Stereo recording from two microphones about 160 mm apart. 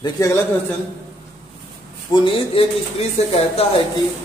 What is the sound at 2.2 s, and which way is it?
Speech, 35° left (ahead or behind).